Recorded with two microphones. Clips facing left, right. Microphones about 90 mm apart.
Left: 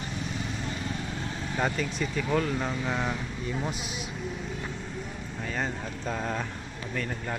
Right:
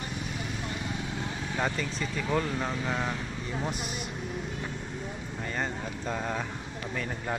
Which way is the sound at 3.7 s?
50° right (ahead or behind).